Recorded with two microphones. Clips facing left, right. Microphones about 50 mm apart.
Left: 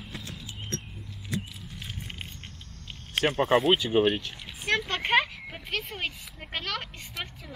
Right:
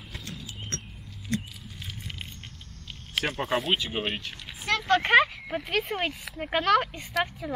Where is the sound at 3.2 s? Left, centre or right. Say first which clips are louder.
Left 4 dB; left.